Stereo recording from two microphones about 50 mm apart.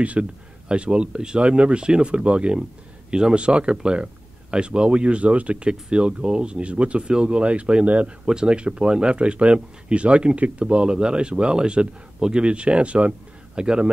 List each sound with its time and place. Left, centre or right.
0.0 s a man's voice: right